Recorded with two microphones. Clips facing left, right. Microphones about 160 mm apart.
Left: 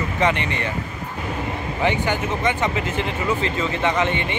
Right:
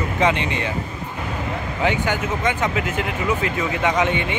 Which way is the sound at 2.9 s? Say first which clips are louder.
Even; 10° right (ahead or behind).